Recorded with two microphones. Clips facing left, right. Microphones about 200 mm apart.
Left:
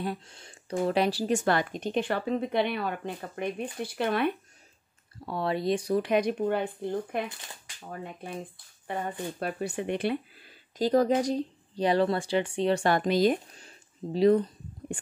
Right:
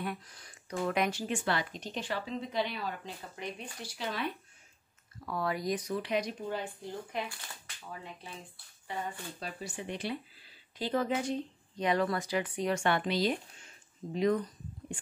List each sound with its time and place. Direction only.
0.0 s speech: 30° left (ahead or behind); by 4.4 s 60° left (ahead or behind)
5.2 s speech: 30° left (ahead or behind)
5.9 s speech: 50° left (ahead or behind)
10.8 s speech: 40° left (ahead or behind)
13.7 s a sound: 30° left (ahead or behind)